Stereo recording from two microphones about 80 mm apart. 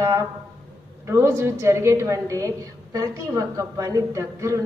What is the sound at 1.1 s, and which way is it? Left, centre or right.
A woman's voice, right.